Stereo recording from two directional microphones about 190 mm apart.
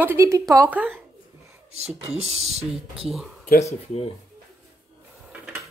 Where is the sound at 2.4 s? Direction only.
35° right (ahead or behind).